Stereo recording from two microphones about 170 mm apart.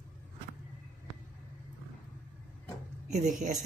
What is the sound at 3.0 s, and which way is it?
Speech, 45° right (ahead or behind).